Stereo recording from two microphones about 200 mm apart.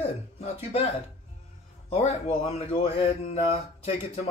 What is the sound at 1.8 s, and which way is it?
Speech, 30° left (ahead or behind).